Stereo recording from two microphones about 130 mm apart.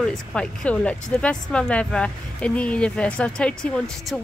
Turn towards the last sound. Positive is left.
turn(degrees=5)  # may be behind; listen again after turning